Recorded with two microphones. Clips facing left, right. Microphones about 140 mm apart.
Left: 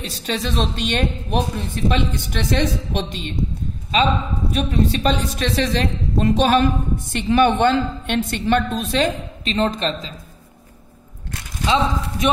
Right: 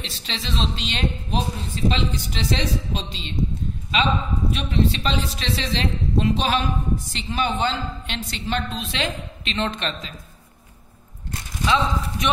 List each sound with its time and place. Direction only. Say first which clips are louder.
0.0 s a woman's voice: left 8 dB; 50° left (ahead or behind)
3.9 s a man's voice: left 3 dB; 40° left (ahead or behind)
11.6 s speech: left 2 dB; 25° left (ahead or behind)